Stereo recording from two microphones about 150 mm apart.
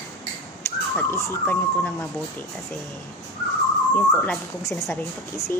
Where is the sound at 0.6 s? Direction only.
15° left (ahead or behind).